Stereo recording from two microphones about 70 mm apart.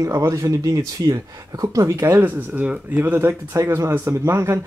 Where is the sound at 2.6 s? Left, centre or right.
Right.